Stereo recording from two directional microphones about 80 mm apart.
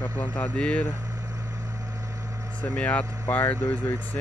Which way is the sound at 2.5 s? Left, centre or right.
Centre.